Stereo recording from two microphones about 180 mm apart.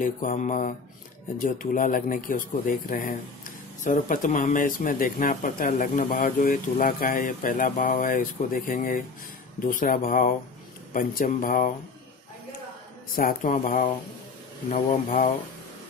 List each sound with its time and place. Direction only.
0.0 s speech: 50° left (ahead or behind)
13.1 s speech: 50° left (ahead or behind)